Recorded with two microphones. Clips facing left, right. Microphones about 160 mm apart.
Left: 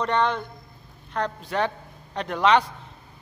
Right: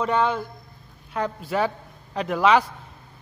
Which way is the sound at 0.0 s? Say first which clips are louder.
Right 1 dB; 5° right (ahead or behind).